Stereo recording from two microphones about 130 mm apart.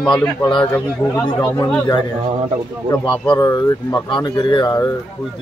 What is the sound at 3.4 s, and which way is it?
Speech, 25° left (ahead or behind).